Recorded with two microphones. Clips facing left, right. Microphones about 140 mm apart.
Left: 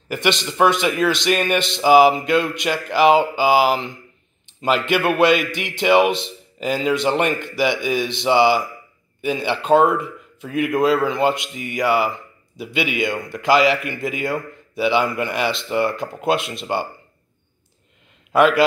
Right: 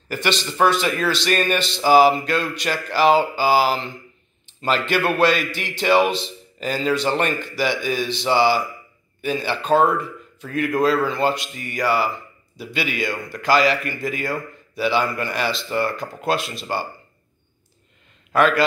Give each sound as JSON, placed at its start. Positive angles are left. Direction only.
{"t": 0.1, "sound": "a man's voice", "side_deg": 20}
{"t": 18.3, "sound": "a man's voice", "side_deg": 25}